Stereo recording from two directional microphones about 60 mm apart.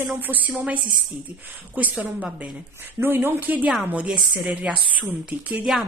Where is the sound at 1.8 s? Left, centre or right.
Right.